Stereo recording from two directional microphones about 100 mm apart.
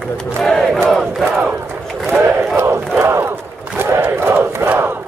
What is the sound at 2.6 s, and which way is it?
Battle cry, 25° right (ahead or behind).